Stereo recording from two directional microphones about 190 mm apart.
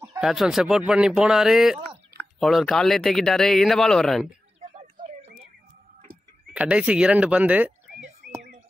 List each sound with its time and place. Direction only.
0.2 s speech: centre (ahead or behind)
4.6 s a sound: 35° right (ahead or behind)
6.5 s speech: 5° right (ahead or behind)